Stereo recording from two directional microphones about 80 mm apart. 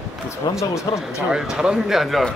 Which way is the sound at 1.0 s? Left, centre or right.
Centre.